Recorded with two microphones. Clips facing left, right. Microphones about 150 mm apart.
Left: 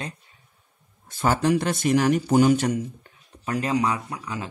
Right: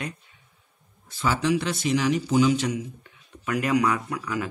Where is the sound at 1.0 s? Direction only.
50° left (ahead or behind); by 4.5 s 25° left (ahead or behind).